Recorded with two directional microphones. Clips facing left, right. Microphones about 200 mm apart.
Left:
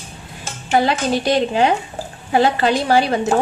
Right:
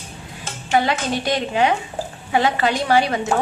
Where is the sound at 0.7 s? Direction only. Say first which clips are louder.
Left 3 dB; 35° left (ahead or behind).